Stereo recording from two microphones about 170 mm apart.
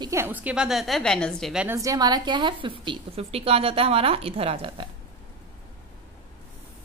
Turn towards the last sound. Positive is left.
turn(degrees=-35)  # may be behind; listen again after turning